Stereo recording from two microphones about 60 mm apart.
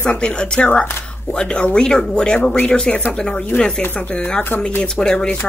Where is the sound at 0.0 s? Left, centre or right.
Centre.